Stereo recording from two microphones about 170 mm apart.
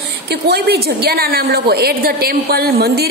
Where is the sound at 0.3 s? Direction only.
70° right (ahead or behind).